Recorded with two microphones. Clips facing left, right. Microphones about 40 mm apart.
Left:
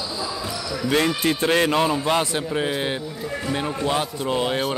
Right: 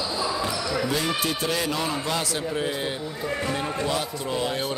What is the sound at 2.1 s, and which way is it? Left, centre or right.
Speech, left.